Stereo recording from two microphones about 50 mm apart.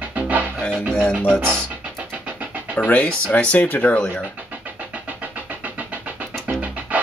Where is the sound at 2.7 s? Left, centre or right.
Left.